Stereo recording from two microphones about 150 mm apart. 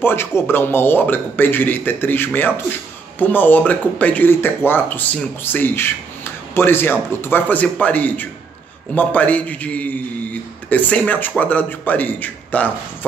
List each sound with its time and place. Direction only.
0.0 s speech: 15° left (ahead or behind)